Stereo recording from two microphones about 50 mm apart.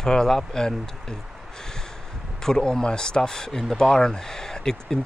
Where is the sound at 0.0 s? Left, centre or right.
Centre.